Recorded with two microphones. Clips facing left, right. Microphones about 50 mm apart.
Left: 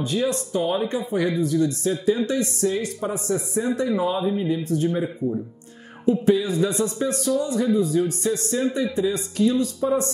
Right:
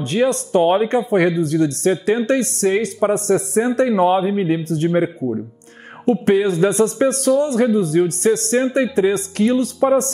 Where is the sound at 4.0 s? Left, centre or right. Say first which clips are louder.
Right 7 dB; right.